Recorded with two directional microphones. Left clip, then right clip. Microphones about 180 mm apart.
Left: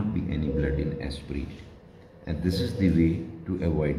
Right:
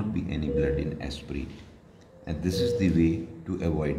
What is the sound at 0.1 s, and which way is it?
Music, 20° right (ahead or behind).